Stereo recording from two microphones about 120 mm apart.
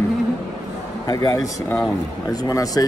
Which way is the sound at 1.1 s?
30° left (ahead or behind).